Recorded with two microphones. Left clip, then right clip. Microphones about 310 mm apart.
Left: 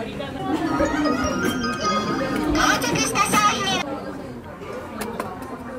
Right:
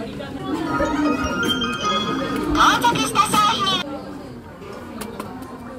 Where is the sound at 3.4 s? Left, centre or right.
Right.